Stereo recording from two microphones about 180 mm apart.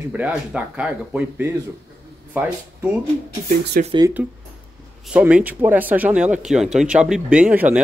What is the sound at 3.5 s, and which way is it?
Speech, 50° right (ahead or behind).